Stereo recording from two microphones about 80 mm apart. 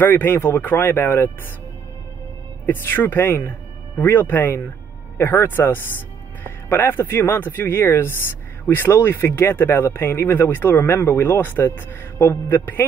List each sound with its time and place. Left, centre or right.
0.0 s speech: left
2.6 s speech: left